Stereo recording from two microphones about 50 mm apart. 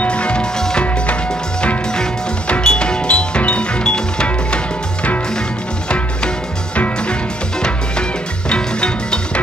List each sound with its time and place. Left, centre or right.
0.0 s music: left
2.4 s music: left
5.9 s music: left
8.5 s music: centre